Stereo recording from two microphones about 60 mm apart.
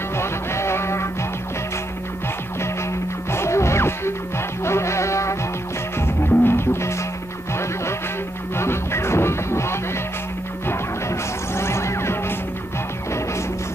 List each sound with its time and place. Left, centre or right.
0.2 s music: left
3.3 s music: left
5.9 s music: left
8.5 s music: left